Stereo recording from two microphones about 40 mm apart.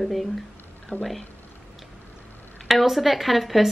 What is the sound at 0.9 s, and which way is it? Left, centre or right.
Speech, left.